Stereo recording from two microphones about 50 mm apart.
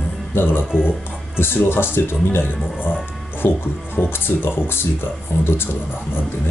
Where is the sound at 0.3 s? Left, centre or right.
Left.